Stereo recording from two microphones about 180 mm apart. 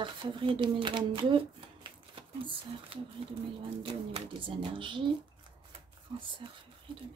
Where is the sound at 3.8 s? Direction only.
30° right (ahead or behind).